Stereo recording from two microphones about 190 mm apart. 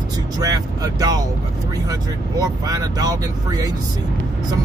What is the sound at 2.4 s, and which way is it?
Speech, 20° right (ahead or behind).